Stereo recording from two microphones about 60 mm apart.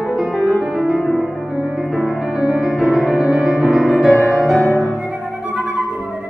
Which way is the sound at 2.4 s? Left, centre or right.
Centre.